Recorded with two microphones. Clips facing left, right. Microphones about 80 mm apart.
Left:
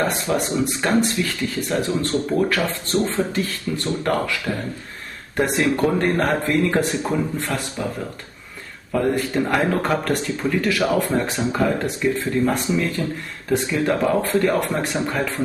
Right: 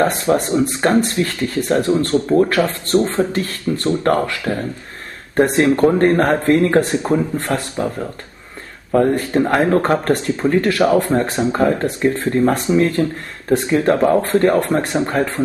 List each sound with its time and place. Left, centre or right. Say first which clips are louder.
0.0 s speech: right 6 dB; right
2.1 s speech: right 7 dB; right
2.9 s speech: right 3 dB; right
8.9 s speech: right 5 dB; right
10.6 s speech: right 4 dB; right